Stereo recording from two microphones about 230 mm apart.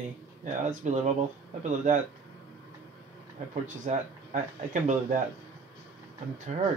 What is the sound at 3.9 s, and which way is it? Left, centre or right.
Speech, right.